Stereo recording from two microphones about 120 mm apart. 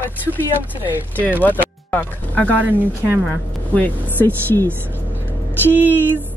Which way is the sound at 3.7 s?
15° left (ahead or behind).